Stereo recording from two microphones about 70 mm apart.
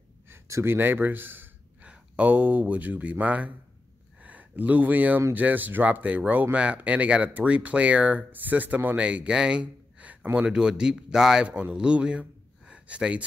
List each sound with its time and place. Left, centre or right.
0.3 s gasp: right
1.9 s speech: centre